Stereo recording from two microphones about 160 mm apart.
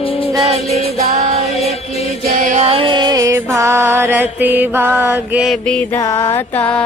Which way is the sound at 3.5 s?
20° right (ahead or behind).